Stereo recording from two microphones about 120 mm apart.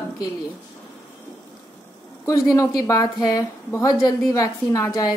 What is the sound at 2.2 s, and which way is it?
A woman's voice, 25° left (ahead or behind).